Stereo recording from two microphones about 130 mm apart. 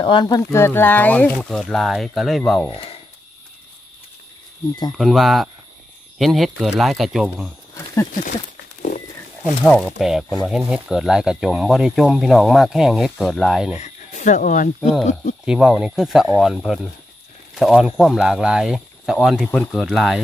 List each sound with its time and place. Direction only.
0.0 s speech: 35° left (ahead or behind)
0.4 s speech: 20° left (ahead or behind); by 2.7 s centre (ahead or behind)
2.7 s speech: 50° left (ahead or behind)
4.9 s speech: centre (ahead or behind)
7.7 s a sound: 20° left (ahead or behind)
8.1 s speech: 80° left
9.4 s speech: centre (ahead or behind)
13.7 s speech: 65° left (ahead or behind); by 14.7 s 85° left
15.4 s speech: 5° right (ahead or behind)